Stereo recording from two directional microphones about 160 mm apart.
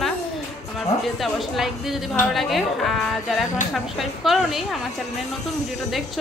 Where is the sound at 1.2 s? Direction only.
Centre (ahead or behind).